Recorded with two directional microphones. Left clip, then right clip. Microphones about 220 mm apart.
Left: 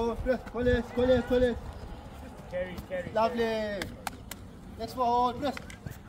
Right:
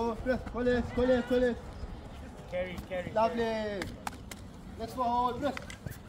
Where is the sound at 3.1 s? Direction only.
35° left (ahead or behind).